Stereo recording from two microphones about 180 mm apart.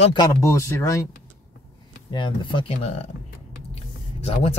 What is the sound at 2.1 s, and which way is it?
Speech, 25° left (ahead or behind).